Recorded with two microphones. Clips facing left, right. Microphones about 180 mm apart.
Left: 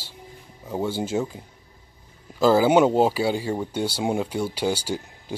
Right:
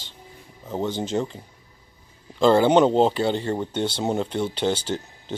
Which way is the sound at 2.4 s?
5° left (ahead or behind).